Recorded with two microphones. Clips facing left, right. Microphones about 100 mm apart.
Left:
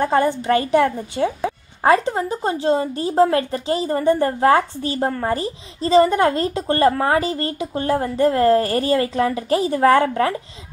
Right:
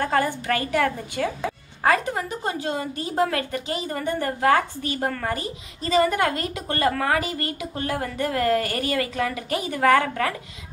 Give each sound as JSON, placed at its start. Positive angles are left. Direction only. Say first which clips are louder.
{"t": 0.0, "sound": "speech", "louder": "left 5 dB", "side_deg": 20}